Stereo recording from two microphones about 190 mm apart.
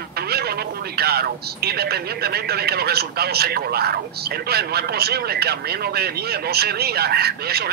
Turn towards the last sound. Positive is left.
turn(degrees=-55)  # may be behind; listen again after turning